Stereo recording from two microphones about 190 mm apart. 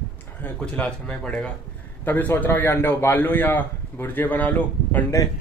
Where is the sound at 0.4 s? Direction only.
5° left (ahead or behind).